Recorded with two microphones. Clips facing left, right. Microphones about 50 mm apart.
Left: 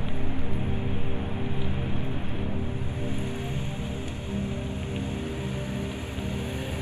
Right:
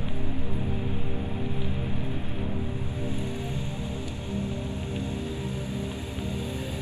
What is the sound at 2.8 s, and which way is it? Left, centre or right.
Music, left.